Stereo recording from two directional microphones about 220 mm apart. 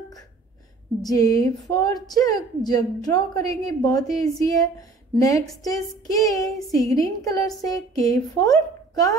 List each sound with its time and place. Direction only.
1.0 s a woman's voice: 15° left (ahead or behind)